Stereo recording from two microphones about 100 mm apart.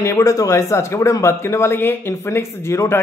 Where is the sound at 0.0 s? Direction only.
35° left (ahead or behind).